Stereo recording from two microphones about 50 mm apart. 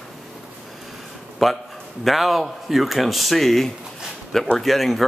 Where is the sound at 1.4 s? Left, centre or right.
Centre.